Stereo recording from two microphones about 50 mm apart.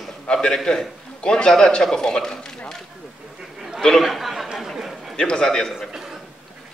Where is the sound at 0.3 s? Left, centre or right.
Centre.